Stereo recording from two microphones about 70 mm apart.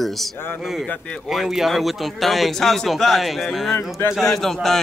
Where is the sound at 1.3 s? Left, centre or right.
Centre.